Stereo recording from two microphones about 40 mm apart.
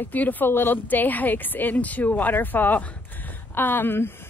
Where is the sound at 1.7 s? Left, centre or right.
Left.